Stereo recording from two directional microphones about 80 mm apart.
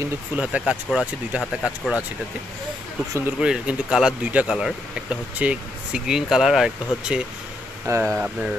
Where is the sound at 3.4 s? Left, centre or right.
Centre.